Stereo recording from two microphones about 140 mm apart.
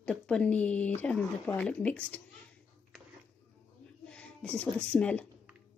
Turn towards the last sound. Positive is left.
turn(degrees=10)  # may be behind; listen again after turning